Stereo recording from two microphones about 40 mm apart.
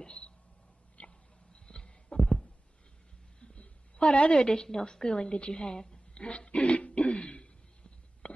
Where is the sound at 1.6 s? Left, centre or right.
Left.